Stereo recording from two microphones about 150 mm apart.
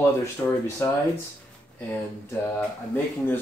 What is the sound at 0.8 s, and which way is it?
Speech, 20° left (ahead or behind).